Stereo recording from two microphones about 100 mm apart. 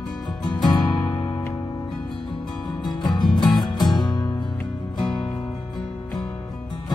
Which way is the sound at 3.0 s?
45° left (ahead or behind).